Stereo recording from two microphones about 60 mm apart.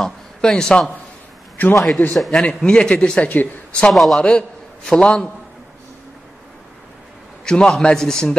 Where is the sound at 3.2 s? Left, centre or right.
Left.